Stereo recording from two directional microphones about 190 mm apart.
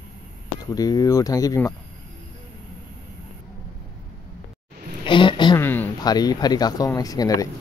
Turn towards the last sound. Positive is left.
turn(degrees=20)  # may be behind; listen again after turning